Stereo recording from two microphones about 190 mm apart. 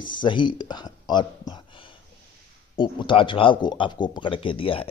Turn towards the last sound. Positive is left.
turn(degrees=30)  # may be behind; listen again after turning